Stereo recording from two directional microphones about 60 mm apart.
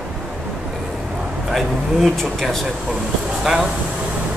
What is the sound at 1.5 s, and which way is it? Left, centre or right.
Speech, centre.